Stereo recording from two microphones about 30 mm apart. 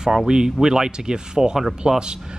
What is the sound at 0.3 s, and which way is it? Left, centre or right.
A man's voice, right.